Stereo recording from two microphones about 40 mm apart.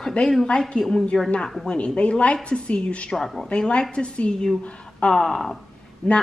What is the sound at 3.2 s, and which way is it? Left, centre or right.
Speech, centre.